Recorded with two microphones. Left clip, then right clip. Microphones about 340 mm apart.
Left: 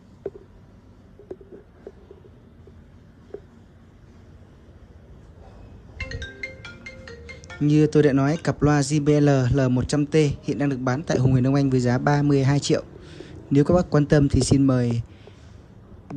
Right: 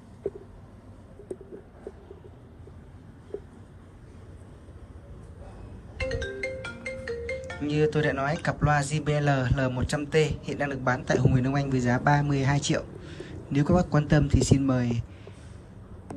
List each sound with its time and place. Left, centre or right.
7.1 s a man's voice: centre